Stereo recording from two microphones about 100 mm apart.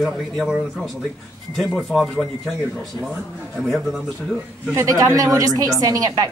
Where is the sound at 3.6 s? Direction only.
Centre (ahead or behind).